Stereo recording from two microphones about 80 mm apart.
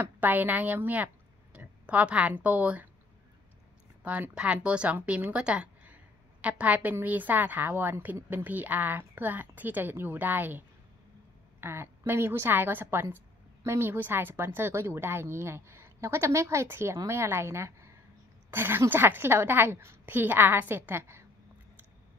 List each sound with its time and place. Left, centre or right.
0.0 s speech: right
4.0 s a woman's voice: centre
11.6 s a woman's voice: right
18.5 s a woman's voice: right